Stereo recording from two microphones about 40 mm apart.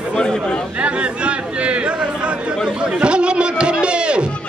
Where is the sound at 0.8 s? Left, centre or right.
Right.